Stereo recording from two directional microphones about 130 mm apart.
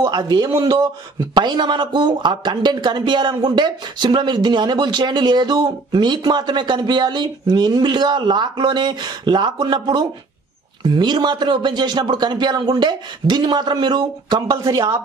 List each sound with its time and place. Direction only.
0.0 s speech: 35° right (ahead or behind)